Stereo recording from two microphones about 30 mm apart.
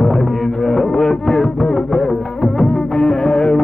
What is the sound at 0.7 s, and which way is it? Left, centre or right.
Music, centre.